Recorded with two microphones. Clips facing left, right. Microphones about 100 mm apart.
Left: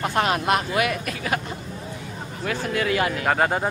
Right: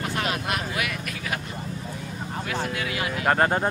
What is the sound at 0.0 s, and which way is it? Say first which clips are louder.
Speech: left 6 dB; 40° left (ahead or behind).